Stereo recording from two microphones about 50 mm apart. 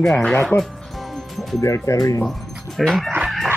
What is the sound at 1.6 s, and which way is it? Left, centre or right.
Speech, left.